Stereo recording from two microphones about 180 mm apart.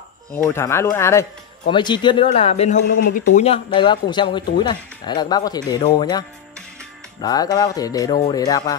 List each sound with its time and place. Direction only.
0.5 s speech: 15° left (ahead or behind)
1.7 s a man's voice: 25° left (ahead or behind)
3.0 s speech: 50° left (ahead or behind)
3.3 s speech: 30° left (ahead or behind)